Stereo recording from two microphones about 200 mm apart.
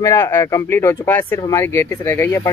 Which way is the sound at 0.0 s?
15° left (ahead or behind).